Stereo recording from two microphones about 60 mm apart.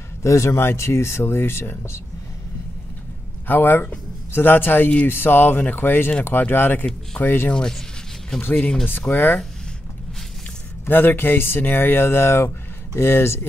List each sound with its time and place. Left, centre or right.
0.2 s speech: left
3.4 s speech: left
7.5 s speech: centre
8.4 s speech: left
10.9 s speech: left